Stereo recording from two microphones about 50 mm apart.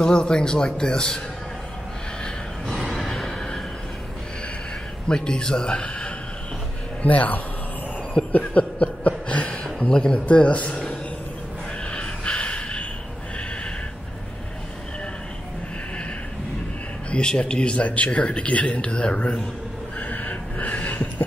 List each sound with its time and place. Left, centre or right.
0.0 s speech: centre
2.8 s neigh: centre
5.0 s speech: centre
7.0 s a man's voice: left
8.3 s a sound: left
10.1 s speech: left
11.9 s snort: left
17.1 s speech: centre
20.0 s a sound: left